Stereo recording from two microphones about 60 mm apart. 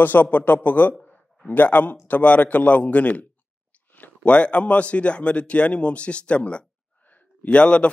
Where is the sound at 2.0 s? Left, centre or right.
Left.